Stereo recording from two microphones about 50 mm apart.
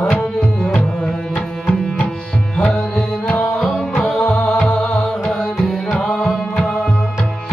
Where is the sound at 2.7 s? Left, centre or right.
Centre.